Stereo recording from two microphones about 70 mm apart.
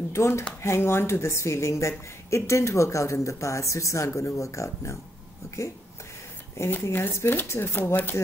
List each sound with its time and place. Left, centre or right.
0.1 s a woman's voice: left